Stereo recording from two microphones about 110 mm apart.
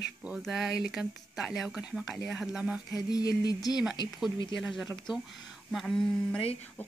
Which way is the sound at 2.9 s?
35° left (ahead or behind).